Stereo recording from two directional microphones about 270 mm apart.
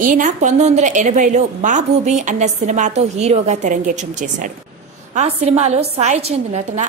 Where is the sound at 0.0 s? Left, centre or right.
Right.